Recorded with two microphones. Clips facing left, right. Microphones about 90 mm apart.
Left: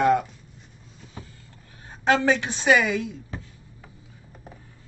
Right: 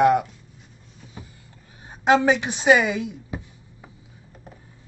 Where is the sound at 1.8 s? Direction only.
15° right (ahead or behind).